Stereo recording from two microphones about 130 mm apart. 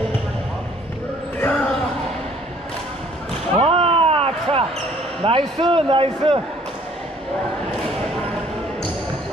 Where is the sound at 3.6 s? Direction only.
45° right (ahead or behind).